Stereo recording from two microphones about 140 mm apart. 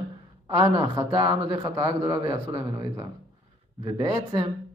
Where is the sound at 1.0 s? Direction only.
35° right (ahead or behind).